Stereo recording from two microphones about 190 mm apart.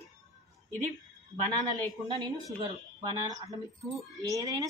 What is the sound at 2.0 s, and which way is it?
Speech, 25° right (ahead or behind).